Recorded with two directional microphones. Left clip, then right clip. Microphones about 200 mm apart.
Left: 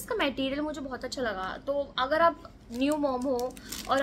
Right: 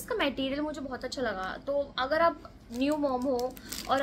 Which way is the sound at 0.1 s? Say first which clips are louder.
Left 1 dB; 5° left (ahead or behind).